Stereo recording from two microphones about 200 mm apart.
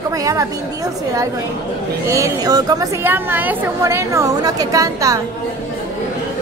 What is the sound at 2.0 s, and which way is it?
A woman's voice, 15° right (ahead or behind).